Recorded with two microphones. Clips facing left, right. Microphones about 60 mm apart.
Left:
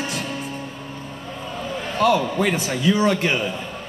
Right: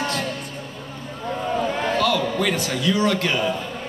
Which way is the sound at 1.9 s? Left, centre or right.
Left.